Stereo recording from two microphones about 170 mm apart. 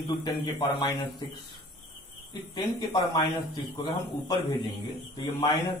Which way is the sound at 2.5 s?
25° left (ahead or behind).